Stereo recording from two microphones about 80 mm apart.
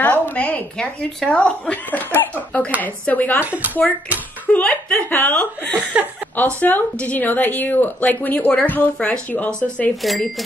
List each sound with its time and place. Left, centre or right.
0.0 s a woman's voice: left
3.4 s speech: right
4.5 s a woman's voice: centre
8.9 s a woman's voice: centre
10.0 s speech: centre